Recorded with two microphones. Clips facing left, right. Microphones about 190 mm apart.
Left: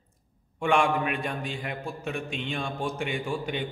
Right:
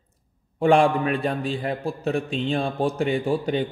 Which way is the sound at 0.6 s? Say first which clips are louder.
Right 6 dB; 35° right (ahead or behind).